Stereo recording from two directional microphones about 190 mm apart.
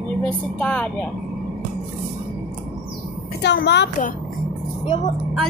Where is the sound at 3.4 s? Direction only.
65° left (ahead or behind).